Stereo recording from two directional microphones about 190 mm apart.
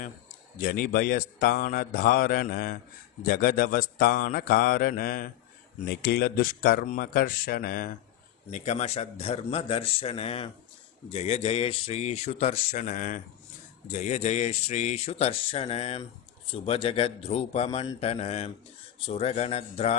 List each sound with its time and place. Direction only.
0.6 s a man's voice: 50° left (ahead or behind)
8.5 s speech: 40° left (ahead or behind)